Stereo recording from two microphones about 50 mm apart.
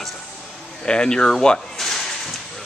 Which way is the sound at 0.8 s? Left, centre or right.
Centre.